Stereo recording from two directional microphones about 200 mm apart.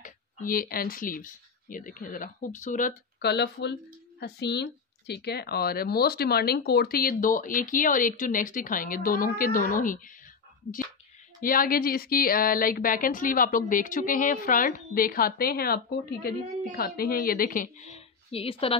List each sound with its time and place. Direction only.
0.0 s speech: 45° left (ahead or behind)
3.2 s speech: 55° left (ahead or behind); by 18.8 s 30° left (ahead or behind)